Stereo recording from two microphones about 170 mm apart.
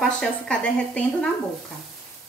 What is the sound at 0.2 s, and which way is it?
Speech, 5° left (ahead or behind).